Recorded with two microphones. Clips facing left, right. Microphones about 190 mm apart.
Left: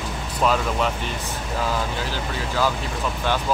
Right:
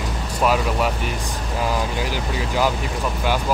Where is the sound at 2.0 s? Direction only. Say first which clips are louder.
Right 3 dB; 15° right (ahead or behind).